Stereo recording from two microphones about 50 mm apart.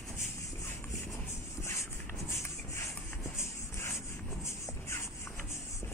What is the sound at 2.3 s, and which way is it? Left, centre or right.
Shuffle, left.